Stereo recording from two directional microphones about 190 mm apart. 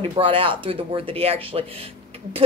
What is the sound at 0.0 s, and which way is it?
Speech, 25° right (ahead or behind).